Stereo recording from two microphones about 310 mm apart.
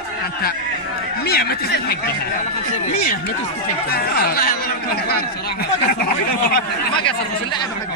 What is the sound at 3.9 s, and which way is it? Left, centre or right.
Speech, left.